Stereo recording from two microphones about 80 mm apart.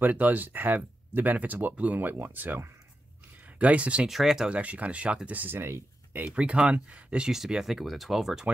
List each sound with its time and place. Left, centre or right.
0.0 s speech: right
4.1 s speech: centre; by 6.2 s right
6.2 s speech: centre